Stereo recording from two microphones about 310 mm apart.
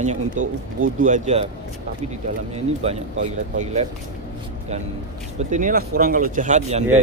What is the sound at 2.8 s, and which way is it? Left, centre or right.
Speech, centre.